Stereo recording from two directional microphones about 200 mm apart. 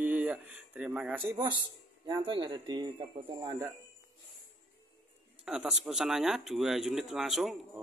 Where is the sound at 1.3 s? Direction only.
20° right (ahead or behind).